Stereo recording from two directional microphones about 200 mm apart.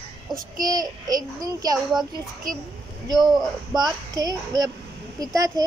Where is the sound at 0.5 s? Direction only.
20° right (ahead or behind).